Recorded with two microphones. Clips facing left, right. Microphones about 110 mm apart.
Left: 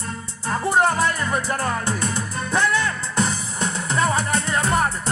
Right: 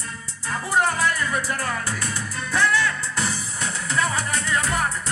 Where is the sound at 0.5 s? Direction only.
25° left (ahead or behind).